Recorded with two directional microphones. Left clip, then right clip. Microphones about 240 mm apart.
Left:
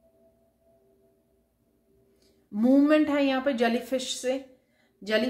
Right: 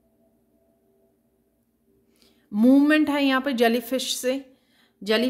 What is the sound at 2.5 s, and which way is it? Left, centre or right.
Speech, right.